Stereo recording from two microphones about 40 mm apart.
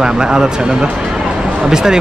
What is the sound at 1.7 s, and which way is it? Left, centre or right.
Speech, centre.